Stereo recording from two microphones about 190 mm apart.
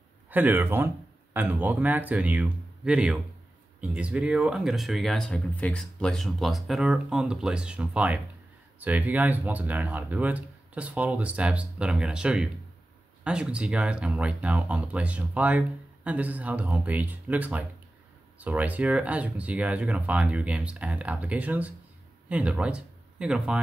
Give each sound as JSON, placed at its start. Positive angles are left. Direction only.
{"t": 0.3, "sound": "speech", "side_deg": -10}